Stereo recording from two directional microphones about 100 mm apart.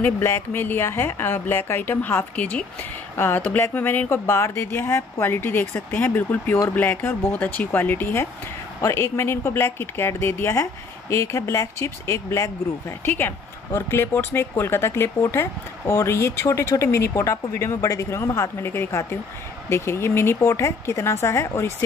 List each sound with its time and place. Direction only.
0.0 s a woman's voice: 25° left (ahead or behind)